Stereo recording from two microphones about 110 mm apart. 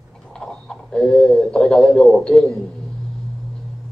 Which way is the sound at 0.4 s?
5° left (ahead or behind).